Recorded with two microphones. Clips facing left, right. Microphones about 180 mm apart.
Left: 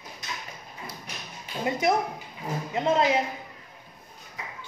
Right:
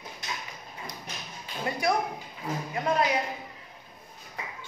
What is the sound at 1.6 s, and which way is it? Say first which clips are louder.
A woman's voice: left 3 dB; 20° left (ahead or behind).